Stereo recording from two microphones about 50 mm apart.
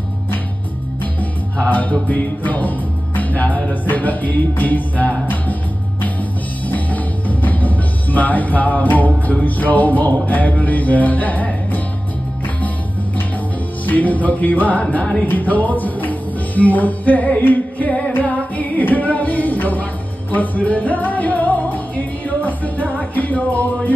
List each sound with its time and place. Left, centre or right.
1.7 s music: left
6.7 s speech: left
13.8 s music: left